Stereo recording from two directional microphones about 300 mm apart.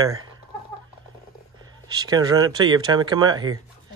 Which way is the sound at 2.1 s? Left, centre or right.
Centre.